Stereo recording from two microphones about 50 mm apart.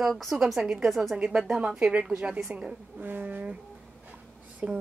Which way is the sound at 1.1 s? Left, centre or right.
Right.